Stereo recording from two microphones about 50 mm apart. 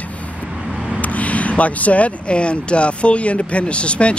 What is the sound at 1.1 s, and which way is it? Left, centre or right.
Speech, left.